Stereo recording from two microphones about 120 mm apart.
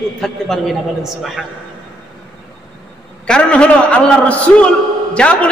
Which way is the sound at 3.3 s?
10° left (ahead or behind).